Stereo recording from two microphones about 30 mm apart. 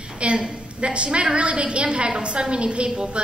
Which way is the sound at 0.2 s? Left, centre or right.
Right.